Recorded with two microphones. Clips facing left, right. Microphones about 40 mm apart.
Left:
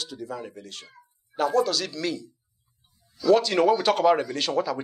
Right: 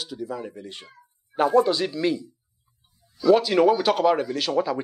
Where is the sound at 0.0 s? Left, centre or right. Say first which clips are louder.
Right 3 dB; centre.